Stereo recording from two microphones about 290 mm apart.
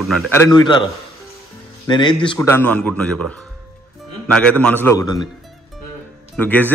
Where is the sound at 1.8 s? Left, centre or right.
Centre.